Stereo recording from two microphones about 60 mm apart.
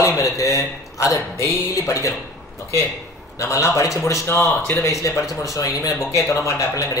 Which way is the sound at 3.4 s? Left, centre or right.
Left.